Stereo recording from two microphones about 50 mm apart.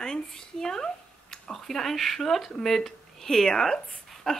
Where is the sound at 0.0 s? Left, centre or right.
Centre.